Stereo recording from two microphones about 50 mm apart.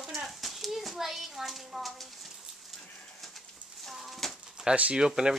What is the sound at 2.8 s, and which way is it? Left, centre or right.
Bird, centre.